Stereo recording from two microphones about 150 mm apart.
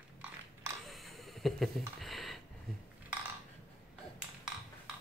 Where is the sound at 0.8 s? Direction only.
Centre (ahead or behind).